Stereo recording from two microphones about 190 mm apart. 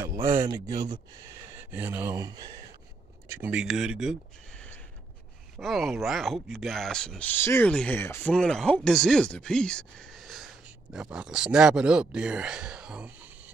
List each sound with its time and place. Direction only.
0.2 s speech: 15° right (ahead or behind)
1.7 s speech: 10° right (ahead or behind)
3.3 s speech: 10° right (ahead or behind)